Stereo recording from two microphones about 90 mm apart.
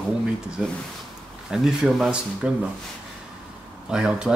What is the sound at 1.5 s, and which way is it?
Speech, 5° right (ahead or behind).